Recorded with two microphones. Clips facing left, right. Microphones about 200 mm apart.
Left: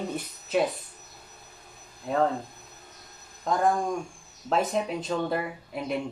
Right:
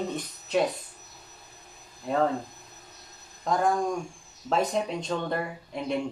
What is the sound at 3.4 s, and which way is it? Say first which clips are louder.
Speech: even; centre (ahead or behind).